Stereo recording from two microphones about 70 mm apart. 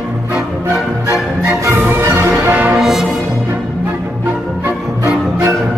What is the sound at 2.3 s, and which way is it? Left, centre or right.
Brass instrument, right.